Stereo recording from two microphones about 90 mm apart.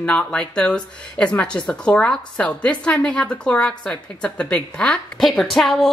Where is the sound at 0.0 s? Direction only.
10° left (ahead or behind).